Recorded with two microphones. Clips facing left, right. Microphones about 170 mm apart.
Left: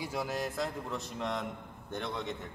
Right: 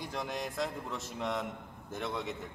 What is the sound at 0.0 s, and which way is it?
A man's voice, 5° left (ahead or behind).